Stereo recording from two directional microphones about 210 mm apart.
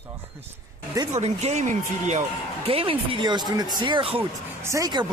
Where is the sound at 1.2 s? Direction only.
30° right (ahead or behind).